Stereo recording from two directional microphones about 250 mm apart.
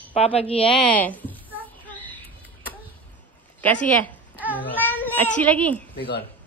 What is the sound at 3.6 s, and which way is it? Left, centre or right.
Speech, centre.